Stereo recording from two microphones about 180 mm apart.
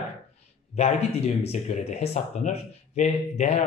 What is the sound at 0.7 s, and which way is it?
Speech, 35° left (ahead or behind).